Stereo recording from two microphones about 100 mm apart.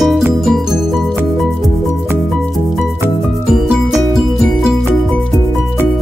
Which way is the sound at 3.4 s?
5° right (ahead or behind).